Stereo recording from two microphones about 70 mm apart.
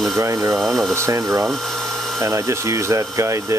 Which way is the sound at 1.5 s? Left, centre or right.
Centre.